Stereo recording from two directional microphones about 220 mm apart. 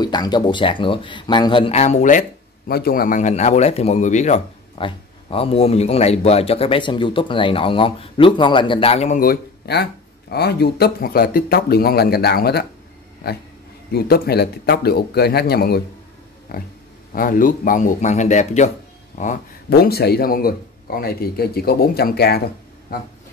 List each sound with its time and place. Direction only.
0.0 s a man's voice: 20° left (ahead or behind); by 22.4 s 45° left (ahead or behind)